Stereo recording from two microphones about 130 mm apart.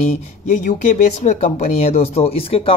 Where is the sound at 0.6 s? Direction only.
90° left.